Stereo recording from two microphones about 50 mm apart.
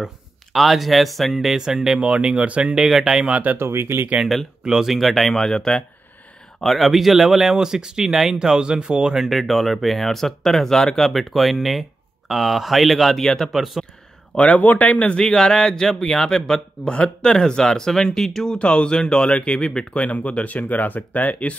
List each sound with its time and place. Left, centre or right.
0.0 s speech: centre
2.0 s speech: right
2.8 s speech: centre
3.3 s speech: right
3.5 s speech: right
4.6 s speech: centre
5.3 s speech: centre
6.6 s speech: centre
8.5 s speech: centre
9.2 s speech: centre
13.5 s speech: centre
14.3 s speech: left; by 18.6 s centre
18.6 s speech: left